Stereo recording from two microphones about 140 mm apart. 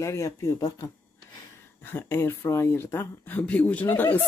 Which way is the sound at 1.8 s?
15° left (ahead or behind).